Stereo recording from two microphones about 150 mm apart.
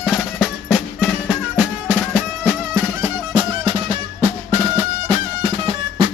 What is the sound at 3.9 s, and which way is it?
Music, 30° right (ahead or behind).